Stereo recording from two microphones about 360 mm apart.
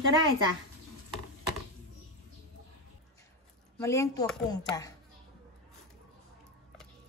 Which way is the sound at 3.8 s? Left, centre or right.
Centre.